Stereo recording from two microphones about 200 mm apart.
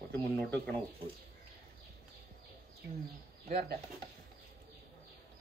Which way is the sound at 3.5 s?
50° right (ahead or behind).